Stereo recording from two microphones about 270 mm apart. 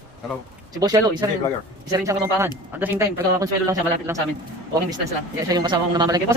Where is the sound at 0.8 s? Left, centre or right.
Centre.